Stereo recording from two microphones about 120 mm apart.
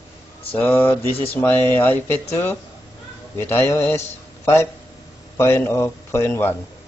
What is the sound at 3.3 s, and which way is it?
Speech, 15° left (ahead or behind).